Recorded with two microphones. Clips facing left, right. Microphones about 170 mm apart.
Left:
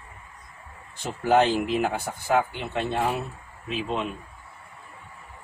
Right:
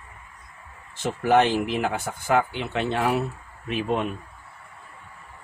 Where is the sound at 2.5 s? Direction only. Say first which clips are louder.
Right 2 dB; 90° right.